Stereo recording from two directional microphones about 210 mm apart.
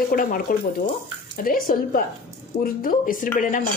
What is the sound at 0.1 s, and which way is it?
Speech, 45° left (ahead or behind).